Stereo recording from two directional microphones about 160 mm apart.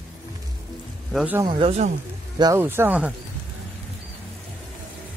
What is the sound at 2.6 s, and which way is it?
Speech, 15° right (ahead or behind).